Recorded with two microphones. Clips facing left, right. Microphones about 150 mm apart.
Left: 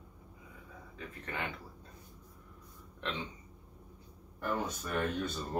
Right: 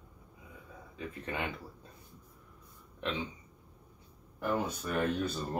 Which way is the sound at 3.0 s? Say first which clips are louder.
Right 3 dB; 15° right (ahead or behind).